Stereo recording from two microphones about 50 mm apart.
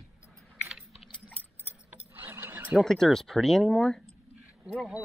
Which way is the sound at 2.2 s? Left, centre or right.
Right.